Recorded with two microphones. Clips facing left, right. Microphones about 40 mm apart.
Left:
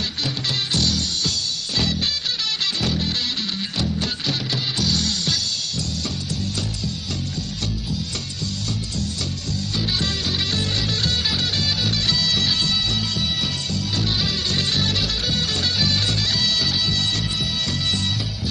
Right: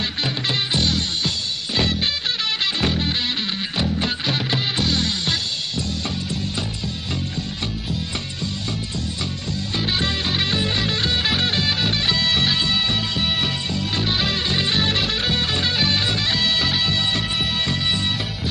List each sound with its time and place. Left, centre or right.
0.2 s music: right
9.8 s music: right